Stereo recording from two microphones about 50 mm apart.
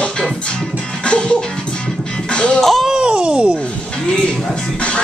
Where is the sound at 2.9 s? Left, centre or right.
Centre.